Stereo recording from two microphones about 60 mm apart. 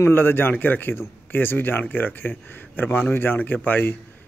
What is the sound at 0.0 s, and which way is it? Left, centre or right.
A man's voice, left.